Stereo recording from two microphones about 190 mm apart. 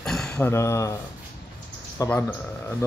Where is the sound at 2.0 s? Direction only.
10° left (ahead or behind).